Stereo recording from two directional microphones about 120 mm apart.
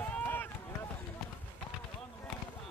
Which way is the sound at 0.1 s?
15° left (ahead or behind).